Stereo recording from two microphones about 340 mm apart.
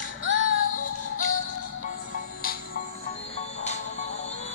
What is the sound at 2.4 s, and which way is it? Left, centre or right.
Music, left.